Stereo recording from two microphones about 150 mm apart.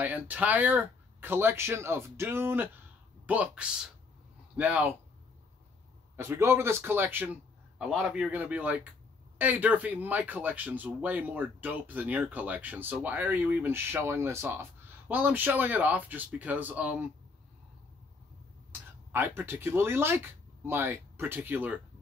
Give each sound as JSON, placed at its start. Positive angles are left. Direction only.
{"t": 0.0, "sound": "speech", "side_deg": -10}
{"t": 6.1, "sound": "speech", "side_deg": -15}
{"t": 18.7, "sound": "speech", "side_deg": -15}